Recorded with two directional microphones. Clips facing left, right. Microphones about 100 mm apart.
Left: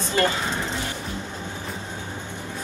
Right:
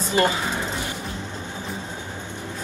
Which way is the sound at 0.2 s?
20° right (ahead or behind).